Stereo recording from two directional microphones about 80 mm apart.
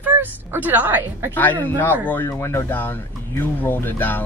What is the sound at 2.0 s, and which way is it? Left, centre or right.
A man's voice, left.